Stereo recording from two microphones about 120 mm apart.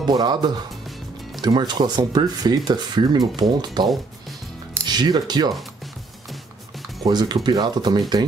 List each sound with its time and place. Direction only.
0.0 s speech: 35° right (ahead or behind)
4.8 s speech: 35° right (ahead or behind)
7.0 s speech: 35° right (ahead or behind)